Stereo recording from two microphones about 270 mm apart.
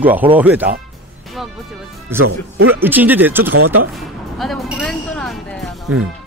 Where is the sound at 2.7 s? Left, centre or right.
Centre.